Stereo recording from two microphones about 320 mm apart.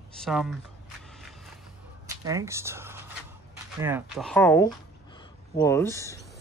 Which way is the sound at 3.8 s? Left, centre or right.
Centre.